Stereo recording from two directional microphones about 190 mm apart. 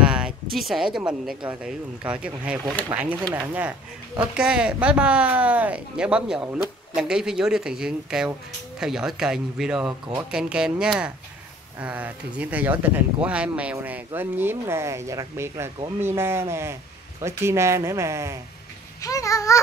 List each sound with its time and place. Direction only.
0.0 s a sound: 5° right (ahead or behind)
1.5 s speech: 5° right (ahead or behind)
18.9 s babbling: 15° left (ahead or behind)